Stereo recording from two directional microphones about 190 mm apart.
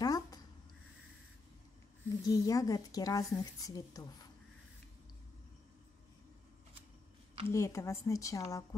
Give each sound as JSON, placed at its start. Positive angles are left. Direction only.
{"t": 0.0, "sound": "a sound", "side_deg": 20}
{"t": 2.2, "sound": "a woman's voice", "side_deg": 15}
{"t": 7.4, "sound": "a woman's voice", "side_deg": 15}